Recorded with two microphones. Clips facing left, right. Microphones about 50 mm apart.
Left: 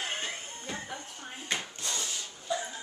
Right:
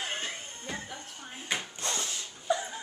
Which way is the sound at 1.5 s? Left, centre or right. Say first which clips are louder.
Right 1 dB; centre.